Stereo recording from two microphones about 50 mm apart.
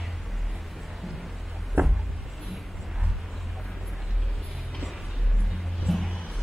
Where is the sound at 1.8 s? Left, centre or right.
Right.